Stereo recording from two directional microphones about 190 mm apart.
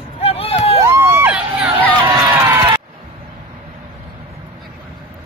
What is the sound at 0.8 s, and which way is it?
Crowd, 15° right (ahead or behind).